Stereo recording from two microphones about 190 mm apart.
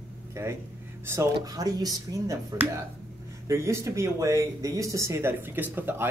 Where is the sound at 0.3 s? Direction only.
15° right (ahead or behind).